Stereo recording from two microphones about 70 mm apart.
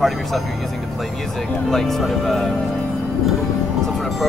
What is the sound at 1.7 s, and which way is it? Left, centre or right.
Speech, centre.